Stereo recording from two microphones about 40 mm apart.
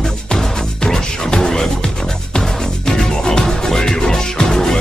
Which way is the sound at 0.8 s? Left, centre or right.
Centre.